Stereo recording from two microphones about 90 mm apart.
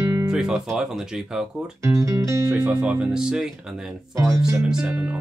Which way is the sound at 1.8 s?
35° right (ahead or behind).